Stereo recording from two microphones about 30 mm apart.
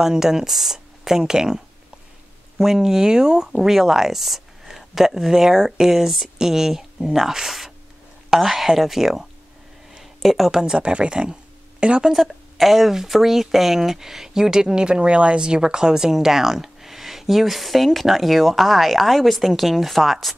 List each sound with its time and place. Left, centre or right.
0.0 s speech: centre
2.6 s speech: centre
3.5 s speech: centre
10.2 s speech: centre
10.5 s speech: right
10.8 s speech: right
12.1 s a woman's voice: centre; by 14.9 s right
14.9 s speech: right
15.4 s speech: right; by 20.3 s centre